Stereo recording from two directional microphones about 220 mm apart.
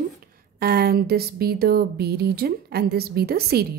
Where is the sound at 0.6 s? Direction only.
45° right (ahead or behind).